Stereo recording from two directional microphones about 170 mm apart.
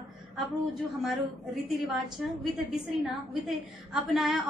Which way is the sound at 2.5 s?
Centre (ahead or behind).